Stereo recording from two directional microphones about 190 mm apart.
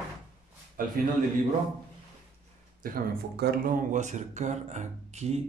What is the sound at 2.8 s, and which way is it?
Speech, 55° right (ahead or behind).